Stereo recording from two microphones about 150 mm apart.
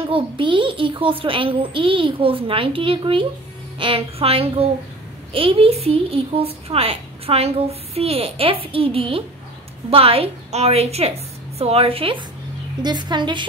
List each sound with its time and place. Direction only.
0.1 s a woman's voice: 35° right (ahead or behind)